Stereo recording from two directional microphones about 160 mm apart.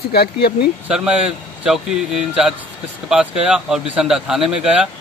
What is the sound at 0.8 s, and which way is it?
Speech, 5° right (ahead or behind).